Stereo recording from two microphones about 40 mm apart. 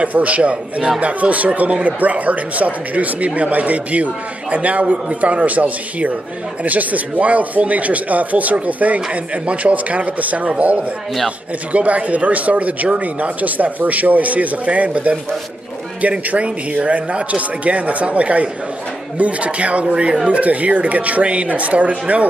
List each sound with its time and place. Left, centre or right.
0.0 s speech: right